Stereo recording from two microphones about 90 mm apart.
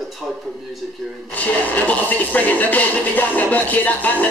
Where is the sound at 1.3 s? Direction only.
20° left (ahead or behind).